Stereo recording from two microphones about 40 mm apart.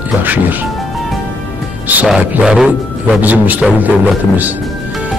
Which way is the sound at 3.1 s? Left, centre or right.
Right.